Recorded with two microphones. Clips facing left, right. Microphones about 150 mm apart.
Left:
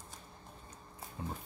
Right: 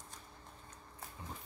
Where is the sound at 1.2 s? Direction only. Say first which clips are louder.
Left 8 dB; 60° left (ahead or behind).